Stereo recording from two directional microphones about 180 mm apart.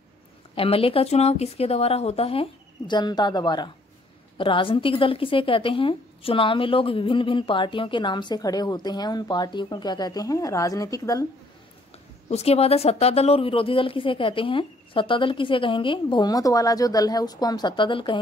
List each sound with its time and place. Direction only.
0.6 s a woman's voice: 30° left (ahead or behind)
12.3 s a woman's voice: 35° left (ahead or behind)